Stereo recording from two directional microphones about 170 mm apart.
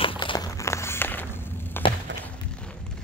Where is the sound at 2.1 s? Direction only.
90° right.